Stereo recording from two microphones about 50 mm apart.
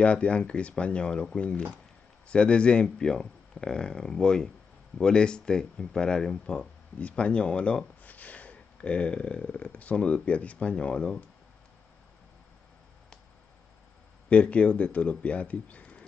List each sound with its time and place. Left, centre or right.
0.0 s speech: left
14.3 s speech: left